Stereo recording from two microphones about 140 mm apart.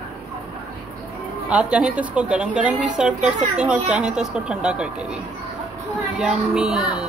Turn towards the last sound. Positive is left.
turn(degrees=-5)  # may be behind; listen again after turning